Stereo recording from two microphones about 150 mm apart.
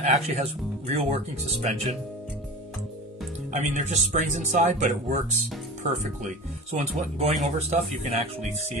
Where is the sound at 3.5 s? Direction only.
50° right (ahead or behind).